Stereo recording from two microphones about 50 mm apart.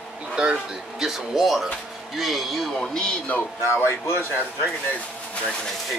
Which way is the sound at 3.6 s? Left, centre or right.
Left.